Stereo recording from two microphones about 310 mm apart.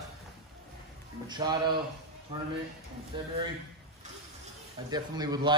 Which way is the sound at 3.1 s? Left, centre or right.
Centre.